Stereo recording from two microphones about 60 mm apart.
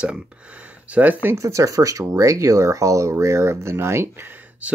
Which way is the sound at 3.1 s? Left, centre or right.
Right.